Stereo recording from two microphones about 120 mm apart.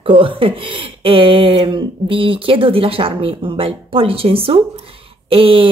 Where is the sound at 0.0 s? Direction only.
50° right (ahead or behind).